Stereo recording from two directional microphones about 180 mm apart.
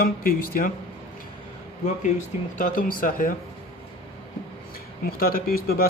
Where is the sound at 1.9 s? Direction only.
40° left (ahead or behind).